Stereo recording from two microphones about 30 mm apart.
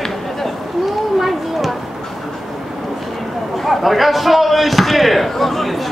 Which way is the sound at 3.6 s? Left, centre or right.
Centre.